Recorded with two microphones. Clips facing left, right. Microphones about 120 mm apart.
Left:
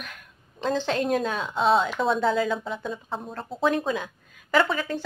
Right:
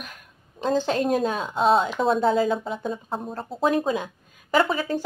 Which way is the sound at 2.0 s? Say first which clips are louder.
Right 2 dB; centre (ahead or behind).